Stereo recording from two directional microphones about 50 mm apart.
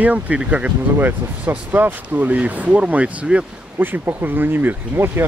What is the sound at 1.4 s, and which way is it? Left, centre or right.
Speech, right.